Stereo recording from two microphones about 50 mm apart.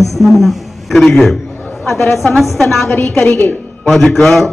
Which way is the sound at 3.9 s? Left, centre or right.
Centre.